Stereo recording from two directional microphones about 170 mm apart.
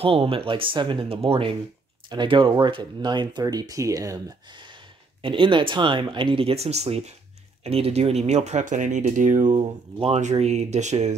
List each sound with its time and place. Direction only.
0.0 s speech: 35° right (ahead or behind)